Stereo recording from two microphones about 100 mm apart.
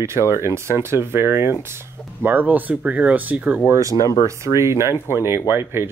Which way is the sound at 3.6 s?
35° right (ahead or behind).